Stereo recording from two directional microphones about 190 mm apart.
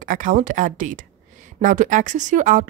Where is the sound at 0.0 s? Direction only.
45° right (ahead or behind).